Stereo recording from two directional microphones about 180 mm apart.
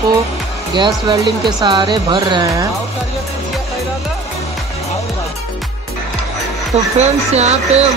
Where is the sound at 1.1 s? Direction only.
25° right (ahead or behind).